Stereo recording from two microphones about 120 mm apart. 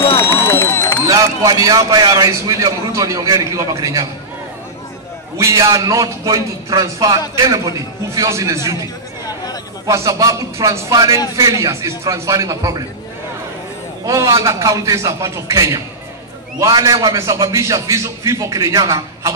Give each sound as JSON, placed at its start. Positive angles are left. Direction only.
{"t": 0.2, "sound": "a sound", "side_deg": 20}
{"t": 1.0, "sound": "a man's voice", "side_deg": -30}
{"t": 5.4, "sound": "a man's voice", "side_deg": -25}
{"t": 9.8, "sound": "a man's voice", "side_deg": -30}
{"t": 14.0, "sound": "a man's voice", "side_deg": -25}